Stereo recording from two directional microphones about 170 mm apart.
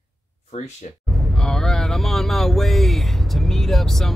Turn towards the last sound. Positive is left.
turn(degrees=0)  # may be behind; listen again after turning